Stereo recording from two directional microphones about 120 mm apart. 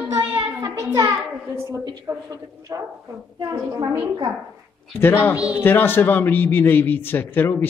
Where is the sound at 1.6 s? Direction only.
25° right (ahead or behind).